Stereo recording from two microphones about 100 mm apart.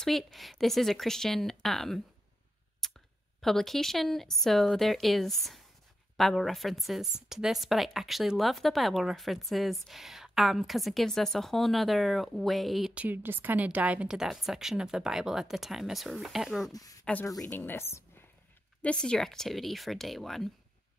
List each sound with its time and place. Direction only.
0.0 s speech: centre (ahead or behind)
2.8 s a sound: 5° left (ahead or behind)
3.3 s speech: 5° left (ahead or behind)
12.9 s speech: 15° right (ahead or behind)
16.7 s speech: 35° left (ahead or behind)
17.0 s a woman's voice: 15° left (ahead or behind)
18.8 s speech: 10° left (ahead or behind)